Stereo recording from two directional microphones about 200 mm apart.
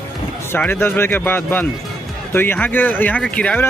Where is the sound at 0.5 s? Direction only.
10° left (ahead or behind).